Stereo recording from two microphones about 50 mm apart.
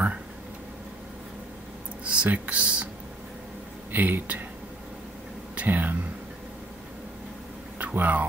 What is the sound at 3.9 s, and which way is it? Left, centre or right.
Speech, right.